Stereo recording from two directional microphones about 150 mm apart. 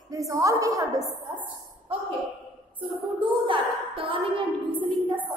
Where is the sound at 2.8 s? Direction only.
35° right (ahead or behind).